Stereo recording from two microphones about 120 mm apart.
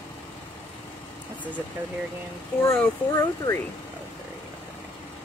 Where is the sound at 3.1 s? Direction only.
30° left (ahead or behind).